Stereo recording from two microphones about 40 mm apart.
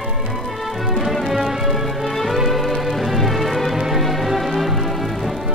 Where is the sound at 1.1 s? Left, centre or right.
Centre.